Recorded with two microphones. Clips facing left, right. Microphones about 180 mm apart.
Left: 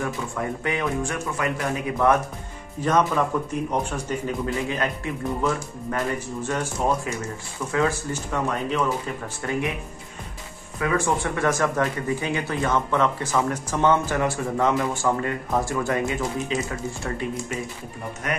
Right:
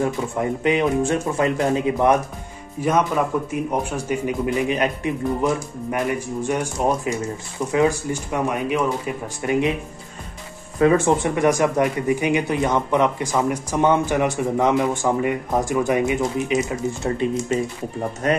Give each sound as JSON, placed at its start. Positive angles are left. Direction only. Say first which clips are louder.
{"t": 0.0, "sound": "speech", "louder": "right 6 dB", "side_deg": -20}
{"t": 2.8, "sound": "speech", "louder": "right 2 dB", "side_deg": -10}
{"t": 10.8, "sound": "speech", "louder": "right 7 dB", "side_deg": -25}
{"t": 18.2, "sound": "speech", "louder": "right 8 dB", "side_deg": -30}